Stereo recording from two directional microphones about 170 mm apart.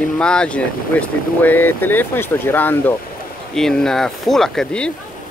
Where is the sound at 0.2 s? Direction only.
5° left (ahead or behind).